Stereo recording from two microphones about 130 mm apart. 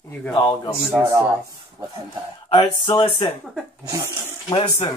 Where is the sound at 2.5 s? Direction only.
40° left (ahead or behind).